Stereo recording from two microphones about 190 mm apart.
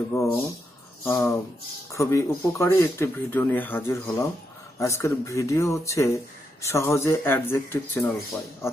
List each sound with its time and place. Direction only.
0.1 s speech: 15° left (ahead or behind)